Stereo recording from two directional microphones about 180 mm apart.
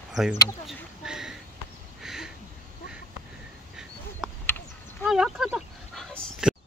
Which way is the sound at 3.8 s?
5° right (ahead or behind).